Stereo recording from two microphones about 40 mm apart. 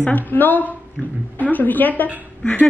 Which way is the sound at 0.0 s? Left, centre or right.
Left.